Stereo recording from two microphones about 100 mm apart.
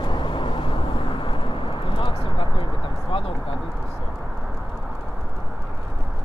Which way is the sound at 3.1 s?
65° left (ahead or behind).